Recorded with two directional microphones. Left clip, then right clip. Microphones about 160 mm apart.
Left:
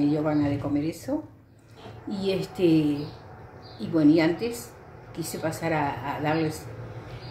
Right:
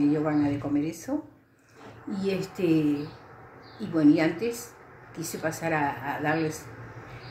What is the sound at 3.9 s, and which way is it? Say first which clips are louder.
A woman's voice: left 1 dB; centre (ahead or behind).